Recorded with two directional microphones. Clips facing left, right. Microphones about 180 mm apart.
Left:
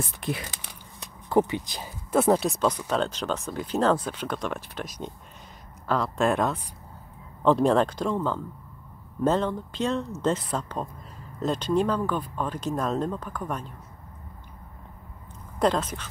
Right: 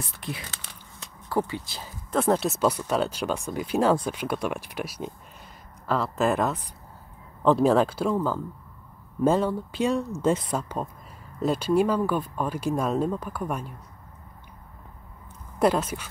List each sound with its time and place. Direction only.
0.0 s speech: 55° left (ahead or behind)
1.3 s speech: 20° left (ahead or behind)
2.1 s speech: 5° left (ahead or behind); by 13.7 s 10° right (ahead or behind)
15.6 s speech: 10° right (ahead or behind)